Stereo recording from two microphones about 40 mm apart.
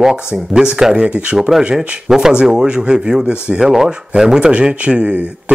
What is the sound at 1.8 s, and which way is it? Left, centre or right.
Speech, centre.